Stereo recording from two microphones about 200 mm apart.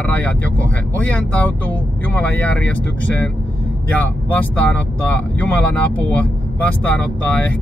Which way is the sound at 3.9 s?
5° left (ahead or behind).